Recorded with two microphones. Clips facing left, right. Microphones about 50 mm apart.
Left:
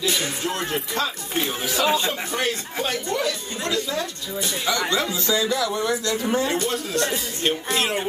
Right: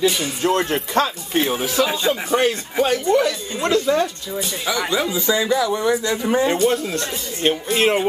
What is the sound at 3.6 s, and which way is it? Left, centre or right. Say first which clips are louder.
Speech: right 8 dB; right.